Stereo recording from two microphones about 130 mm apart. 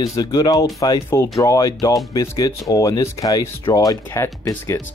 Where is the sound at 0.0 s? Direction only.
30° left (ahead or behind).